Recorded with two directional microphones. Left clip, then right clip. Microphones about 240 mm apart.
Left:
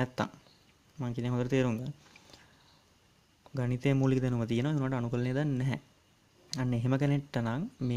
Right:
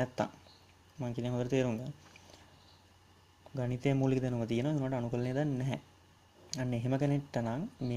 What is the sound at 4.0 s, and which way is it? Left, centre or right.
Speech, left.